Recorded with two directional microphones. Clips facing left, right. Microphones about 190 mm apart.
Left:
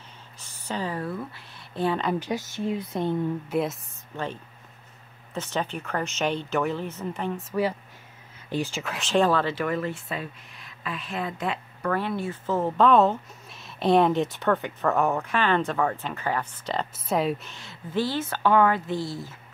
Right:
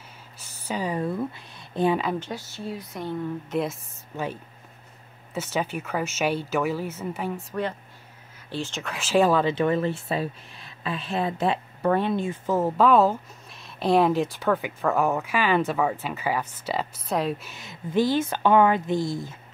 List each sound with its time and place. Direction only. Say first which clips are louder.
0.4 s a sound: right 1 dB; 15° left (ahead or behind)
0.7 s speech: right 3 dB; 15° right (ahead or behind)
2.1 s speech: left 4 dB; 15° left (ahead or behind)
3.4 s speech: left 1 dB; centre (ahead or behind)
5.3 s speech: right 2 dB; 5° right (ahead or behind)
8.5 s speech: left 3 dB; 10° left (ahead or behind); by 19.1 s 15° right (ahead or behind)